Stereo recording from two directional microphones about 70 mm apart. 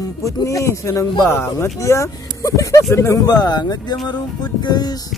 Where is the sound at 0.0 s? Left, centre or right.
Left.